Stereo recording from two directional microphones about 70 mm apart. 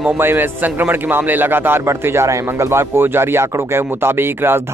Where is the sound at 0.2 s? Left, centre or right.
Right.